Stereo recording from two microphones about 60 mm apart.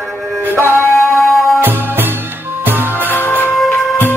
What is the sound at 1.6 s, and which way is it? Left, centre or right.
Music, right.